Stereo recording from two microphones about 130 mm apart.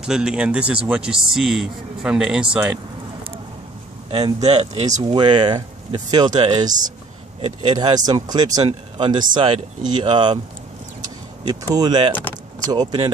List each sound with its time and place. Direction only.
0.0 s speech: 5° right (ahead or behind)
4.1 s speech: 45° right (ahead or behind)
5.0 s speech: 40° right (ahead or behind)
11.0 s vehicle: 30° right (ahead or behind)
12.7 s speech: 35° right (ahead or behind)